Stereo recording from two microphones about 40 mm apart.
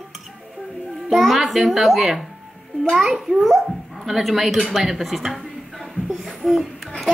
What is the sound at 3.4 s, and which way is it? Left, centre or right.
Speech, centre.